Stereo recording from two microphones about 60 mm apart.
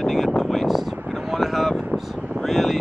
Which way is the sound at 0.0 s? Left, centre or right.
Centre.